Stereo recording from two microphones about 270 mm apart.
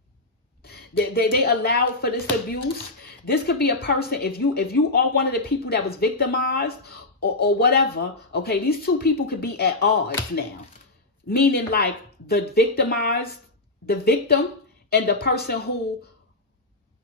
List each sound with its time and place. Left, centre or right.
0.6 s speech: left
11.2 s speech: left